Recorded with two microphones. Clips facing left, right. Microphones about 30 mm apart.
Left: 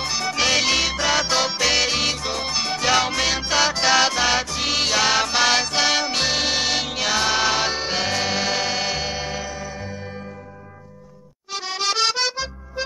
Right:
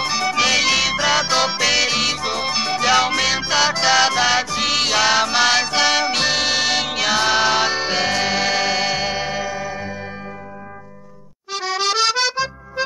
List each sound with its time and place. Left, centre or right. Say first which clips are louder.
0.0 s music: right 4 dB; centre
11.5 s accordion: right 4 dB; centre
12.2 s music: right 4 dB; right